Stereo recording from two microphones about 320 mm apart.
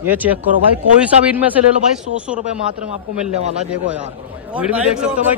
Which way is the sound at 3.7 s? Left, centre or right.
Centre.